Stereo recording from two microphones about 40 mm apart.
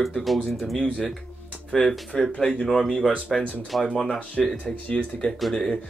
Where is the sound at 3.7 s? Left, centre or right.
Centre.